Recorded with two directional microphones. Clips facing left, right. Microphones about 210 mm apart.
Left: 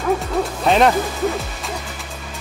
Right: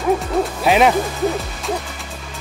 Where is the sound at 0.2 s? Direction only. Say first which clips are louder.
Right 2 dB; 5° right (ahead or behind).